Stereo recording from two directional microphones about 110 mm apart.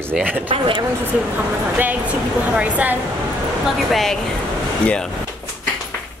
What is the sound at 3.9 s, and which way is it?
Speech, 5° left (ahead or behind).